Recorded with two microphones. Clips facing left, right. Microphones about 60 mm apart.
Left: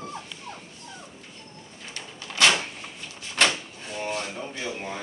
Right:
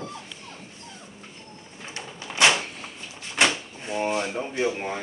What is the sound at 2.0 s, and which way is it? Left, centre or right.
Bird, right.